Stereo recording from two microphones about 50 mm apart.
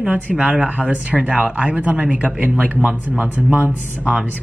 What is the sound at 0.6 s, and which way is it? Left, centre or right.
Speech, right.